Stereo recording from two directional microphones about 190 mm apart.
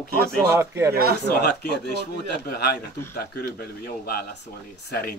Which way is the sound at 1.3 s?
55° left (ahead or behind).